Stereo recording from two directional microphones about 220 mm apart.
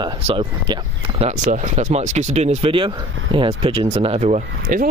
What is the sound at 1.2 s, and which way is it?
Speech, 35° right (ahead or behind).